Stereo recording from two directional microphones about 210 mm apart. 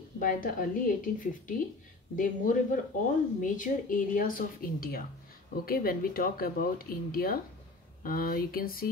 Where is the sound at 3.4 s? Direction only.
40° left (ahead or behind).